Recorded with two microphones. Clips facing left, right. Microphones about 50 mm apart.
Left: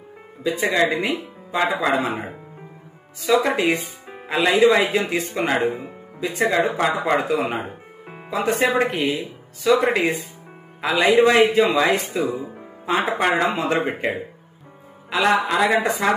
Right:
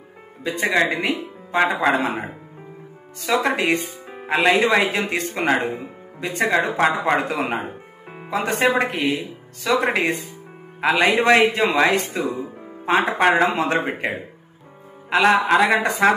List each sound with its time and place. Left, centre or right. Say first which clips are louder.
0.4 s speech: even; right
3.2 s speech: left 2 dB; right
15.0 s speech: right 3 dB; right